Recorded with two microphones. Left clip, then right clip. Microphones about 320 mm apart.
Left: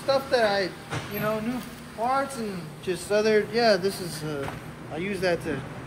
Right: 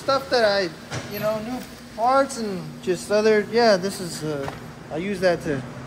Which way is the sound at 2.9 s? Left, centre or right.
Right.